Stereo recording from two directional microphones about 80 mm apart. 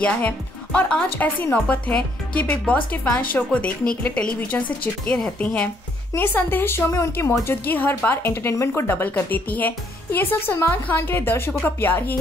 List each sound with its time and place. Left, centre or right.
0.0 s speech: centre
1.1 s speech: left
6.1 s speech: left
7.6 s speech: left